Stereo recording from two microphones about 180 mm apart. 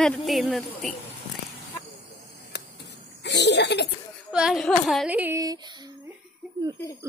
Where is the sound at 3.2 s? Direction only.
75° left (ahead or behind).